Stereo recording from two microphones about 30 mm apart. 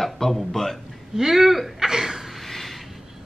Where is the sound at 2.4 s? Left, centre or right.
Centre.